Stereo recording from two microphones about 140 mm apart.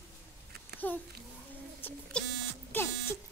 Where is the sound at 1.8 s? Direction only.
15° left (ahead or behind).